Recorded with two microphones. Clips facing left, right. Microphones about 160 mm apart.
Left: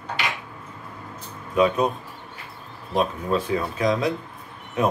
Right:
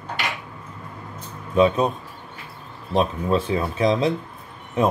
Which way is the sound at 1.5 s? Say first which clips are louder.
Right 2 dB; 30° right (ahead or behind).